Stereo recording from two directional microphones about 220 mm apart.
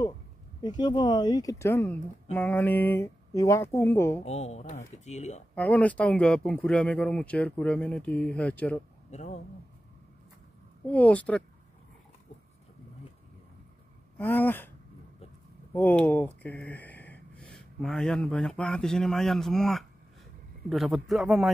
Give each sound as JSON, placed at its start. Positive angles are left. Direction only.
{"t": 0.6, "sound": "speech", "side_deg": 20}
{"t": 4.2, "sound": "speech", "side_deg": 30}
{"t": 5.5, "sound": "speech", "side_deg": 5}
{"t": 9.1, "sound": "speech", "side_deg": 30}
{"t": 10.9, "sound": "speech", "side_deg": 5}
{"t": 14.1, "sound": "speech", "side_deg": 10}
{"t": 15.7, "sound": "speech", "side_deg": 10}